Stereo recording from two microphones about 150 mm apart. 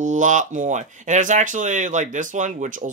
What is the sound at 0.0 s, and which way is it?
Speech, 55° right (ahead or behind).